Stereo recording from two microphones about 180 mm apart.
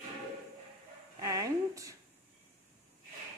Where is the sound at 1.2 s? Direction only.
20° right (ahead or behind).